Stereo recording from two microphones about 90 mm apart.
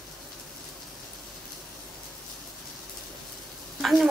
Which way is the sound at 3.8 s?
Centre (ahead or behind).